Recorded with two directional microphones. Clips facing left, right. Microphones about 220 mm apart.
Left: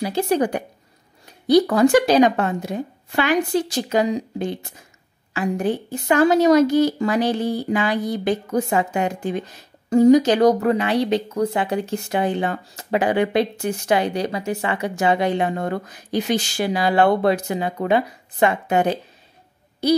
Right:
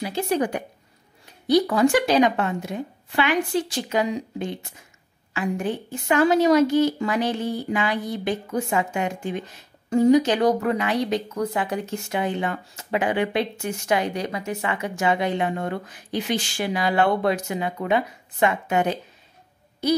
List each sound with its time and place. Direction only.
0.0 s speech: 35° left (ahead or behind)